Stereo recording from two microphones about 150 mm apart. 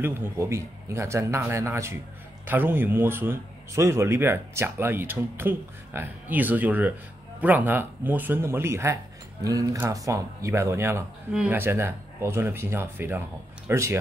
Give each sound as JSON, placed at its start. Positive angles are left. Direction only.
{"t": 0.0, "sound": "speech", "side_deg": -15}